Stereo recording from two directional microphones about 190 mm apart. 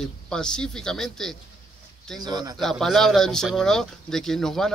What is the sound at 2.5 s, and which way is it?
Speech, centre (ahead or behind).